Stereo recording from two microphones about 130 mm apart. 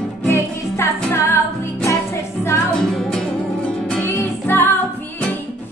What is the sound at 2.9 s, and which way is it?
Music, 5° left (ahead or behind).